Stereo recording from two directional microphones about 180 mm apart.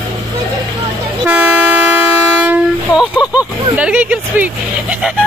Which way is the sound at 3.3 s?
10° right (ahead or behind).